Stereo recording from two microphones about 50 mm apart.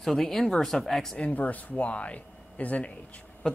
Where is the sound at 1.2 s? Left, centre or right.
Left.